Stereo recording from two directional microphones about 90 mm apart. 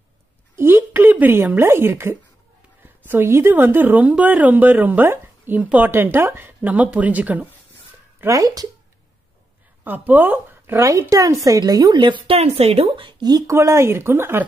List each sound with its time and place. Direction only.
0.6 s a sound: 25° right (ahead or behind)
2.8 s a woman's voice: 20° right (ahead or behind)
8.3 s speech: 40° right (ahead or behind)
9.8 s speech: 20° right (ahead or behind)
10.9 s a woman's voice: 40° right (ahead or behind); by 13.1 s 85° right
13.5 s a woman's voice: 30° right (ahead or behind)